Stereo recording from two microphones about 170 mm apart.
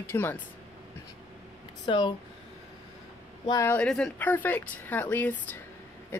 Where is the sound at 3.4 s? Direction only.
20° left (ahead or behind).